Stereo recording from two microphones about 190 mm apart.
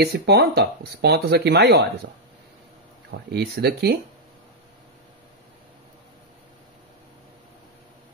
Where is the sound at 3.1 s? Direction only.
60° right (ahead or behind).